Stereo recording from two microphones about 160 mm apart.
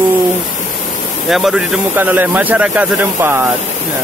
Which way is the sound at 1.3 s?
Centre (ahead or behind).